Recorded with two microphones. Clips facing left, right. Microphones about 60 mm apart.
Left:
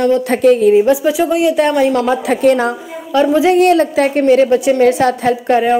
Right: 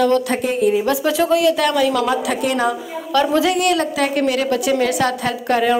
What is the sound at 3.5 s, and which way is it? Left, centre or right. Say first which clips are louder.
Speech: left 7 dB; left.